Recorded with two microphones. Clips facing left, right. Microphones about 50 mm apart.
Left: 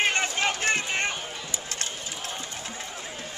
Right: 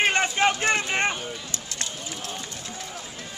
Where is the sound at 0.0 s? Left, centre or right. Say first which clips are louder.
Right 4 dB; right.